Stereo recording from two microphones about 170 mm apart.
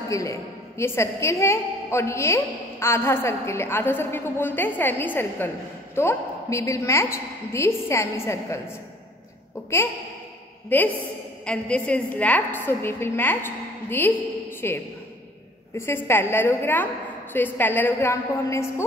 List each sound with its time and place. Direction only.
0.1 s a woman's voice: 20° left (ahead or behind)
10.7 s a woman's voice: 10° left (ahead or behind)